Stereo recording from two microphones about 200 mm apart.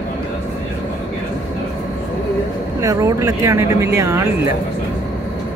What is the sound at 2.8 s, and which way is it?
Speech, 15° right (ahead or behind).